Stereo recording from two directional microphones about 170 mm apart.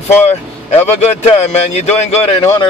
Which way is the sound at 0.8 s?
40° left (ahead or behind).